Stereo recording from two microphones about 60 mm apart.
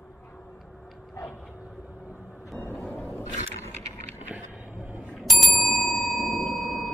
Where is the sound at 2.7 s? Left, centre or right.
Left.